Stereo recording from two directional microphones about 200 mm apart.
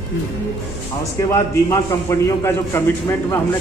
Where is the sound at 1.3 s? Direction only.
15° left (ahead or behind).